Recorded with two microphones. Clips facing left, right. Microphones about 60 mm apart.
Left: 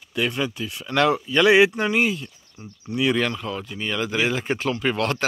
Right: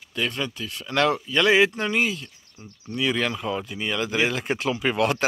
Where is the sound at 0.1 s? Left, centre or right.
Centre.